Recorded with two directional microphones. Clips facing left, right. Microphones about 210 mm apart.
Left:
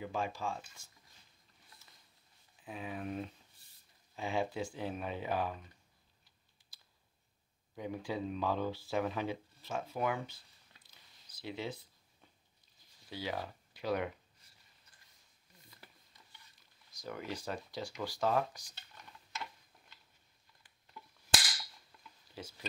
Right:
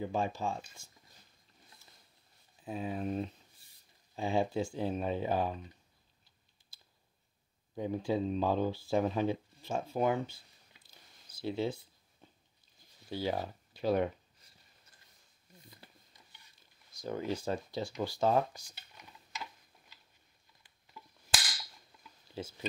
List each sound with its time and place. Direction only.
0.0 s speech: 25° right (ahead or behind)
2.6 s speech: 35° right (ahead or behind)
7.7 s speech: 30° right (ahead or behind)
13.1 s speech: 30° right (ahead or behind)
15.7 s a sound: 15° right (ahead or behind)
16.9 s speech: 25° right (ahead or behind)
19.3 s a sound: centre (ahead or behind)
22.4 s speech: 25° right (ahead or behind)